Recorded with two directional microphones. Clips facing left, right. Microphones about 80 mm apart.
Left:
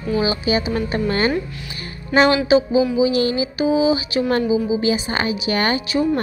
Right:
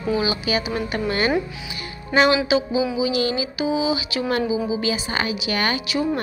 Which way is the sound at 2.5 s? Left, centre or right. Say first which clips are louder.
Left 5 dB; left.